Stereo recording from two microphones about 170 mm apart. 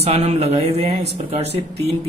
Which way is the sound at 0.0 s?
40° right (ahead or behind).